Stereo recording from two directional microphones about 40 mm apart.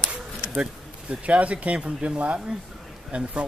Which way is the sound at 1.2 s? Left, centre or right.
Right.